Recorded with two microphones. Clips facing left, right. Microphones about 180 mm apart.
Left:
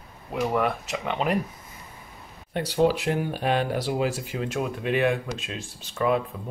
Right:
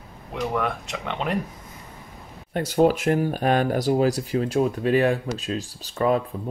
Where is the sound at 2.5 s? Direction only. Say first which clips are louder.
Right 3 dB; 45° right (ahead or behind).